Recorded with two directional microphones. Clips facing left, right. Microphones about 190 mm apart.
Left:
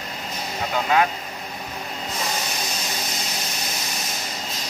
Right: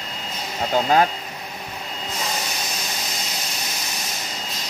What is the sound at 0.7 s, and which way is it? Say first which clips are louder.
Speech: right 3 dB; 35° right (ahead or behind).